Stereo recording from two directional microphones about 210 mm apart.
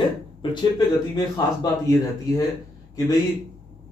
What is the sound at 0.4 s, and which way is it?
Speech, 15° left (ahead or behind).